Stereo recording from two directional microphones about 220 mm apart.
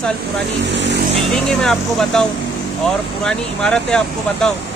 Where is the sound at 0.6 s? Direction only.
55° right (ahead or behind).